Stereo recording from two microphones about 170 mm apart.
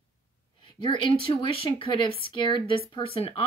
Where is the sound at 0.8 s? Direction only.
30° left (ahead or behind).